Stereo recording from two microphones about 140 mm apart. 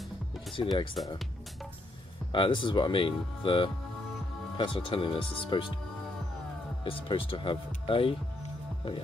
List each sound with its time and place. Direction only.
0.6 s speech: 35° left (ahead or behind)
2.3 s speech: 35° left (ahead or behind)
6.8 s speech: 40° left (ahead or behind)